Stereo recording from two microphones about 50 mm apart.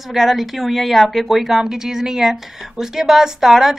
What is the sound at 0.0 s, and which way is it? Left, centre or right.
A woman's voice, centre.